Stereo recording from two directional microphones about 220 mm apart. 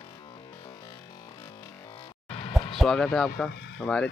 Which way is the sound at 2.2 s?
30° left (ahead or behind).